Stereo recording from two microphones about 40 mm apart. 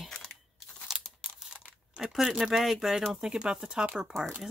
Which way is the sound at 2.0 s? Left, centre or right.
Centre.